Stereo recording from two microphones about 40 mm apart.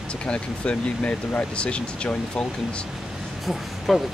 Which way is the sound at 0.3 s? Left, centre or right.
Left.